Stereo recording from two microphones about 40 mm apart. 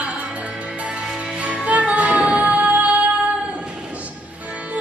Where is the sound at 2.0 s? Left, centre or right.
Right.